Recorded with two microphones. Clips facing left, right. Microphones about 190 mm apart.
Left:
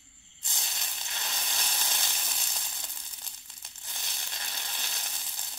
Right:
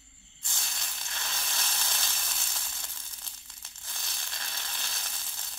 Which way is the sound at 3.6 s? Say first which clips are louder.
Left 1 dB; 20° left (ahead or behind).